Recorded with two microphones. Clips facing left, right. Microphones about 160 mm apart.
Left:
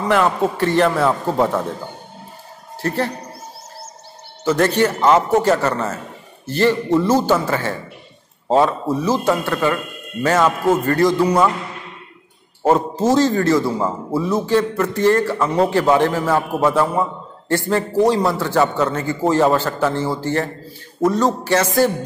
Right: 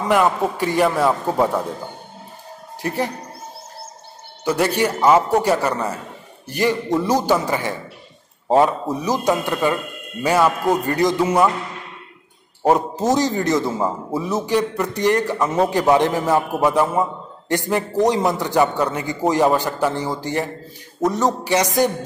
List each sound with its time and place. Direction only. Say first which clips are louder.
0.1 s a man's voice: even; 10° right (ahead or behind)
2.8 s a man's voice: left 2 dB; 15° right (ahead or behind)
4.5 s a man's voice: left 3 dB; 10° right (ahead or behind)
12.7 s a man's voice: left 5 dB; 15° right (ahead or behind)